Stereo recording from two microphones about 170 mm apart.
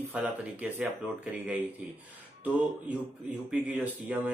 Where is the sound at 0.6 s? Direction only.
10° right (ahead or behind).